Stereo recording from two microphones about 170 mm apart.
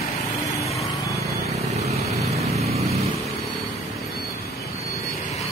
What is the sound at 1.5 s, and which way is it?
Vehicle, 40° right (ahead or behind).